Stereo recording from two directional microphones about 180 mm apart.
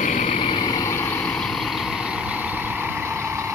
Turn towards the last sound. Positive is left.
turn(degrees=-15)  # may be behind; listen again after turning